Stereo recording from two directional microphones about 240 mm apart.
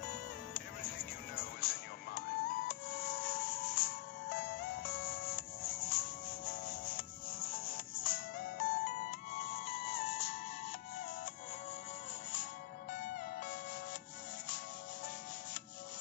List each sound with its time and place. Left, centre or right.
0.0 s music: left
12.9 s music: left